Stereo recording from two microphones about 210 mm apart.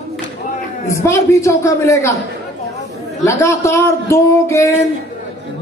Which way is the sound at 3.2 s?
15° left (ahead or behind).